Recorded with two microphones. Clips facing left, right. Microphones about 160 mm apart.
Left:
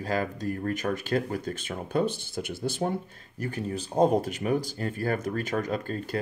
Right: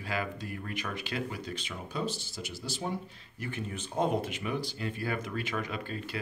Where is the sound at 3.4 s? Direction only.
35° left (ahead or behind).